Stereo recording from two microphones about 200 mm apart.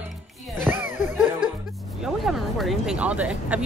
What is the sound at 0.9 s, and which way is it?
Music, 40° left (ahead or behind).